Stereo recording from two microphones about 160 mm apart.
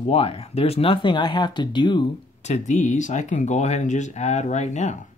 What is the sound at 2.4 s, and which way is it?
Speech, 45° left (ahead or behind).